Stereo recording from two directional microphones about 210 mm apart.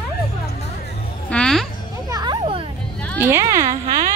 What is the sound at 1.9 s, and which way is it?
Children playing, 20° right (ahead or behind).